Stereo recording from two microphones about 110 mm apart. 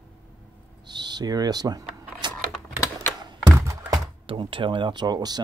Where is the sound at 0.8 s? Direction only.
40° right (ahead or behind).